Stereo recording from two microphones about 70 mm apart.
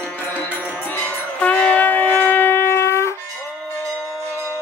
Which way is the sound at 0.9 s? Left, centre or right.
Centre.